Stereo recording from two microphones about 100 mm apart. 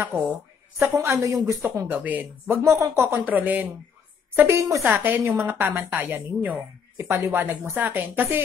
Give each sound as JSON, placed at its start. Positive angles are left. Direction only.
{"t": 0.0, "sound": "a woman's voice", "side_deg": -15}
{"t": 0.9, "sound": "a woman's voice", "side_deg": -30}
{"t": 1.9, "sound": "speech", "side_deg": -15}
{"t": 2.6, "sound": "a woman's voice", "side_deg": -30}
{"t": 3.1, "sound": "speech", "side_deg": -15}
{"t": 4.4, "sound": "a woman's voice", "side_deg": -30}
{"t": 4.8, "sound": "speech", "side_deg": -15}
{"t": 5.1, "sound": "a woman's voice", "side_deg": -30}
{"t": 7.0, "sound": "a woman's voice", "side_deg": -30}